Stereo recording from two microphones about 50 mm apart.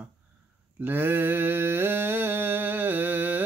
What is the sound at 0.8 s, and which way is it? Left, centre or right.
Mantra, right.